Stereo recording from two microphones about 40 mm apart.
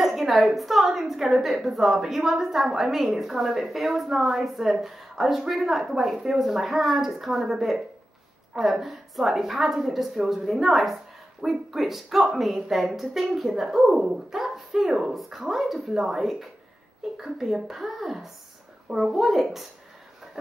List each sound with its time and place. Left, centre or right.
0.0 s a woman's voice: centre